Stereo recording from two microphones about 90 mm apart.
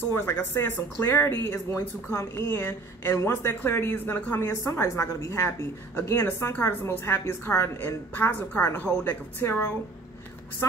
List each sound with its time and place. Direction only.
0.0 s speech: 25° left (ahead or behind)